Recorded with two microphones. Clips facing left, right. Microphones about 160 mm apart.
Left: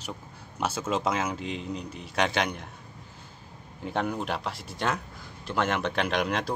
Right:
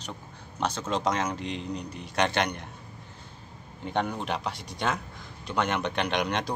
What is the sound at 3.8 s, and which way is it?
Speech, centre (ahead or behind).